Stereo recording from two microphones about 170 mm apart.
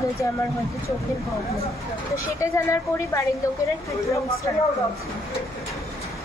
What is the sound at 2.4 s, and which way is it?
Speech, 15° left (ahead or behind).